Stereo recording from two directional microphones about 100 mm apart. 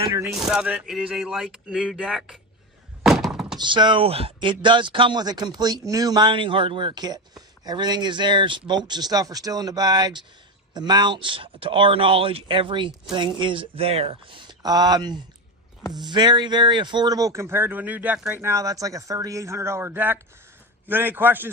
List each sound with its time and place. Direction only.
0.2 s speech: 5° right (ahead or behind)
3.0 s thunk: 5° right (ahead or behind)
3.5 s speech: 50° right (ahead or behind); by 14.4 s 70° right (ahead or behind)
14.4 s speech: 45° right (ahead or behind); by 18.4 s 15° right (ahead or behind)
18.4 s speech: 30° right (ahead or behind)